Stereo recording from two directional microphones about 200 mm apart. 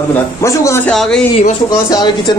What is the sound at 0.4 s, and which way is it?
Speech, 15° left (ahead or behind).